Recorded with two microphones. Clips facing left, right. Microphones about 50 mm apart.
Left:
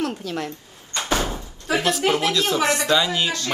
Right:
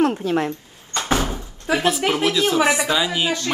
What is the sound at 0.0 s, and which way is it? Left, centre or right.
Speech, right.